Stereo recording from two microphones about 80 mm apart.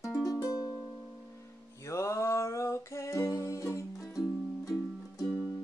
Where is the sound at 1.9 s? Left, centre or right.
Left.